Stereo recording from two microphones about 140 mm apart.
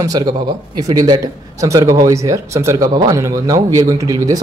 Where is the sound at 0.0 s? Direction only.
25° right (ahead or behind).